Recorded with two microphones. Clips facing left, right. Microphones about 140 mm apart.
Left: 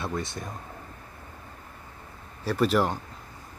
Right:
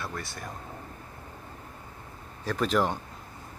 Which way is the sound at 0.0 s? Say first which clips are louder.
Left 5 dB; 20° left (ahead or behind).